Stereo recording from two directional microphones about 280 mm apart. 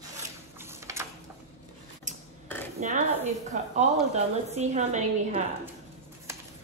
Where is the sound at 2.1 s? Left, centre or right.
Right.